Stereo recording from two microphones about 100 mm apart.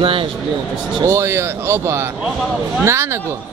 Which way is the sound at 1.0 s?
30° right (ahead or behind).